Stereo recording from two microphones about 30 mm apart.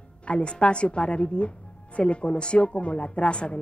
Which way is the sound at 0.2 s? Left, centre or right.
Left.